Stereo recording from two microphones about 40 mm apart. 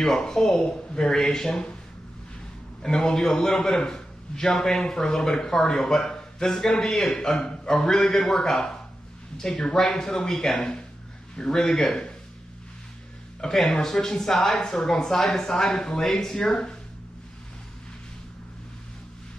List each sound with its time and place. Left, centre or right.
0.0 s a man's voice: centre
0.6 s a man's voice: left
2.8 s a man's voice: centre
10.6 s a man's voice: left
13.4 s a man's voice: centre